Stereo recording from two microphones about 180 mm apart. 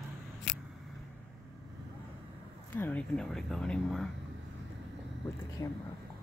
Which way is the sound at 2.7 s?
10° left (ahead or behind).